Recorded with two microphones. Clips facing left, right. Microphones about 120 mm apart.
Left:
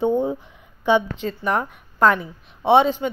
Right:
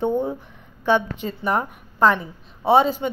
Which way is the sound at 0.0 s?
15° left (ahead or behind).